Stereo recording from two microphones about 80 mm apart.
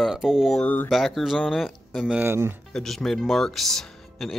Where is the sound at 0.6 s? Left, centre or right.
Centre.